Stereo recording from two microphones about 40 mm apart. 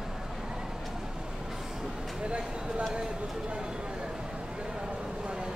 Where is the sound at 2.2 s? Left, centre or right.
Right.